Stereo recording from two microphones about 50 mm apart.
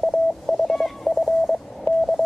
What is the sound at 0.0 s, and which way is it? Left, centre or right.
Telephone dialing, centre.